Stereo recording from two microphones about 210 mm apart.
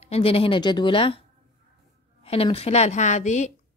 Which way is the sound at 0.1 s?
25° left (ahead or behind).